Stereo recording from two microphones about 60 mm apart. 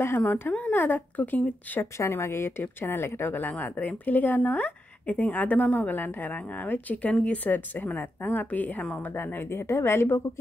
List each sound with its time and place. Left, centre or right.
0.2 s speech: left
2.0 s a woman's voice: left
3.4 s speech: left
9.1 s a woman's voice: left